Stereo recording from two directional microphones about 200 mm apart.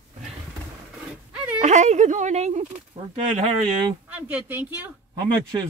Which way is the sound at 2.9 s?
15° right (ahead or behind).